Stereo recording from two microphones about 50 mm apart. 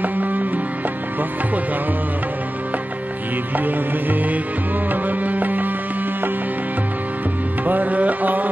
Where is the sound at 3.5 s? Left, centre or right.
Right.